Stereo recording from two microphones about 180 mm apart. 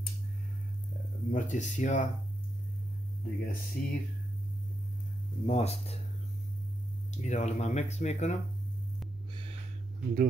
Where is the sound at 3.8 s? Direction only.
50° left (ahead or behind).